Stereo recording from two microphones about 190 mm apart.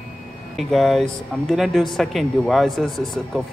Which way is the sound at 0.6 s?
Centre (ahead or behind).